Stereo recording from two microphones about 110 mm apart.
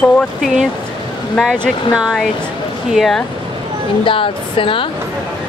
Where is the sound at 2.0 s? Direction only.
5° right (ahead or behind).